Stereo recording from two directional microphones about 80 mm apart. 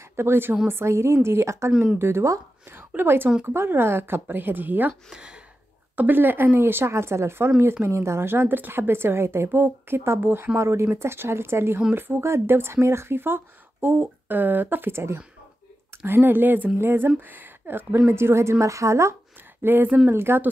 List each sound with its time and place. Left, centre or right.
0.1 s a woman's voice: right
2.7 s a woman's voice: right
5.9 s a woman's voice: right
19.6 s speech: right